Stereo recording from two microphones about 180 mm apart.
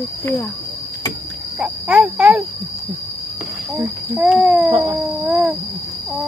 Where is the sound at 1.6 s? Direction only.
Centre (ahead or behind).